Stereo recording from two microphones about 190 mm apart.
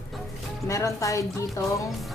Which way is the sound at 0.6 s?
15° left (ahead or behind).